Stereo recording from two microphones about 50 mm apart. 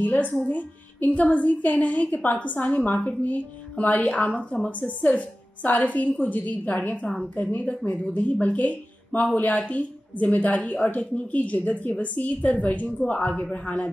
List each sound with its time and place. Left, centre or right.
0.0 s a woman's voice: left